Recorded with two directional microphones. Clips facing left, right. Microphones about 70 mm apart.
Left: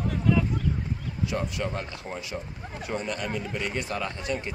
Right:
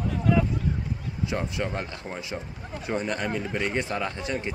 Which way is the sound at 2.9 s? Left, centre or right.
Right.